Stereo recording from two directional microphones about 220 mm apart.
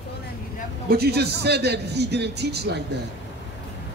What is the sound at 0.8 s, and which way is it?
A man's voice, 45° right (ahead or behind).